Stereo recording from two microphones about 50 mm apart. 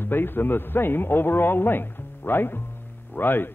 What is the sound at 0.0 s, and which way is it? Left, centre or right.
A man's voice, left.